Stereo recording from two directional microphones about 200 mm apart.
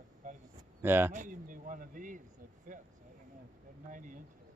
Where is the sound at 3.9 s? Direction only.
40° right (ahead or behind).